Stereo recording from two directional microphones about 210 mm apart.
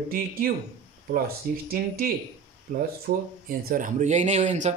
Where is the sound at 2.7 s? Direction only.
40° right (ahead or behind).